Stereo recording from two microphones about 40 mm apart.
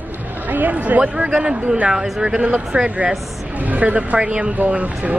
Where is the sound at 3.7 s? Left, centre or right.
Right.